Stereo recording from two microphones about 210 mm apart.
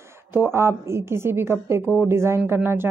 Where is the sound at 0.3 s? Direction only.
10° right (ahead or behind).